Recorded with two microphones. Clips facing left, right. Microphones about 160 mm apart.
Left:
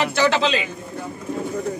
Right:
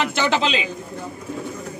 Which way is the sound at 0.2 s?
15° right (ahead or behind).